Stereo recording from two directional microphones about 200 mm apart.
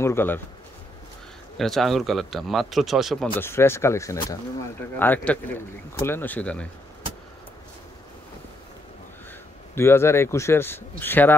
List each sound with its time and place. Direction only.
0.0 s speech: 10° left (ahead or behind)
1.6 s speech: centre (ahead or behind)
3.3 s speech: 10° left (ahead or behind)
9.8 s speech: 10° left (ahead or behind)